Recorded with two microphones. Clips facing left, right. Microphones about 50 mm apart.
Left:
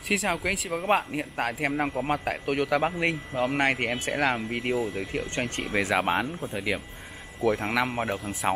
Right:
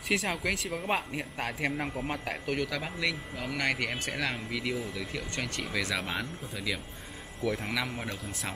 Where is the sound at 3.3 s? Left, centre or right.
Left.